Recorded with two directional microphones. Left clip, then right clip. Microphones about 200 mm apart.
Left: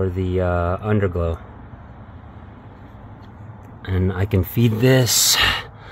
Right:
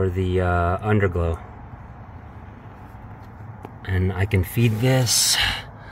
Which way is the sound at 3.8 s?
20° left (ahead or behind).